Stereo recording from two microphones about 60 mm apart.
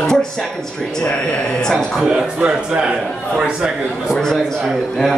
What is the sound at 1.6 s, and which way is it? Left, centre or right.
Speech, centre.